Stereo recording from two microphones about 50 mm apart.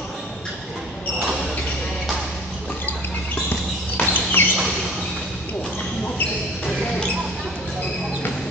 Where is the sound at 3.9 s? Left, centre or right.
Left.